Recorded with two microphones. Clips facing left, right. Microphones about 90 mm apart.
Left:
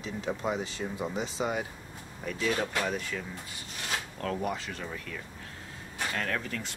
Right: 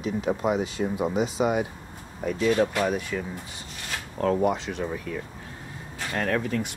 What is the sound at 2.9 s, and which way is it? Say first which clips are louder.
Speech: right 6 dB; 10° right (ahead or behind).